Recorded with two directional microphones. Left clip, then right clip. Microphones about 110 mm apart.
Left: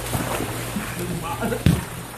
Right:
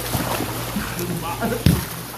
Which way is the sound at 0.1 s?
35° right (ahead or behind).